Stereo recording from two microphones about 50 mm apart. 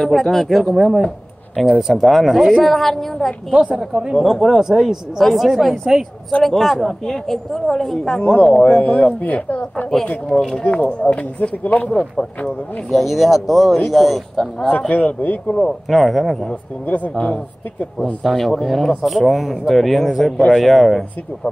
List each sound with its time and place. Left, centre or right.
0.0 s a woman's voice: centre
3.7 s a woman's voice: centre
8.6 s speech: left
10.6 s speech: left
11.9 s speech: centre
12.4 s a woman's voice: centre
14.7 s speech: left
15.9 s a woman's voice: centre
16.8 s speech: left
18.3 s a woman's voice: centre